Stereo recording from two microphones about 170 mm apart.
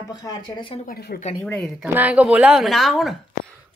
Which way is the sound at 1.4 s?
5° left (ahead or behind).